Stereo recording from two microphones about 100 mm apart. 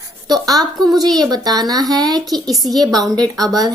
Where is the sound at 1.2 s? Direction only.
45° right (ahead or behind).